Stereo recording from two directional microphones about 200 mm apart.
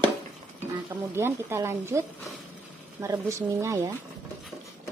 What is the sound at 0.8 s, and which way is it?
Speech, 10° right (ahead or behind).